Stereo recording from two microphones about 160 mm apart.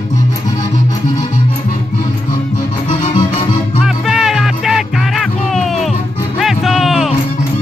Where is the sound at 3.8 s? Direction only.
5° right (ahead or behind).